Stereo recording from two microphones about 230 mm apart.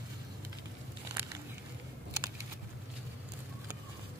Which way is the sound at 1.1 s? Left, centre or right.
Centre.